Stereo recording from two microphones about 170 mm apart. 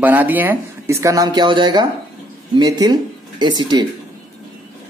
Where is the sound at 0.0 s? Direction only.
10° right (ahead or behind); by 3.8 s 25° right (ahead or behind).